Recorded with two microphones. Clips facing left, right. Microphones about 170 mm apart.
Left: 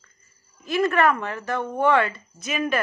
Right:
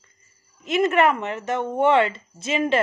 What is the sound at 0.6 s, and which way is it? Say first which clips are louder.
A woman's voice: right 2 dB; 20° right (ahead or behind).